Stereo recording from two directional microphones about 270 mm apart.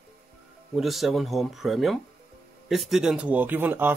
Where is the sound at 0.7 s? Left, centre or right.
Centre.